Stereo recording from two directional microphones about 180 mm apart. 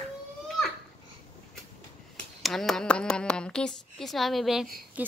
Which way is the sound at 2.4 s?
Centre (ahead or behind).